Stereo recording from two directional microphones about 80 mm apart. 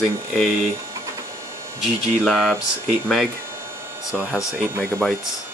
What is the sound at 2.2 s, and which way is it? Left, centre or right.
Speech, centre.